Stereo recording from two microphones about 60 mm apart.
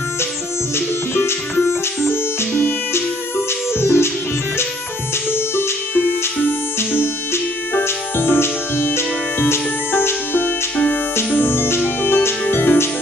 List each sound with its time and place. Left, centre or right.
0.7 s music: left
5.3 s music: left
7.7 s music: left